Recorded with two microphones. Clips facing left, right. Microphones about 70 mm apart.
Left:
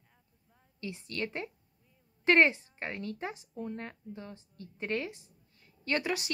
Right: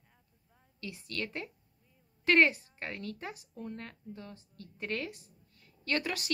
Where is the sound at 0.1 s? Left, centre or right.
Centre.